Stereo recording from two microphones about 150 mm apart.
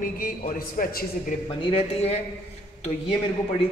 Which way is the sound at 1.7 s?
45° left (ahead or behind).